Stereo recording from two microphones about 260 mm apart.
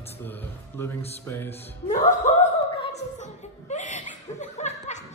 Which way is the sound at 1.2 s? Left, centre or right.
Centre.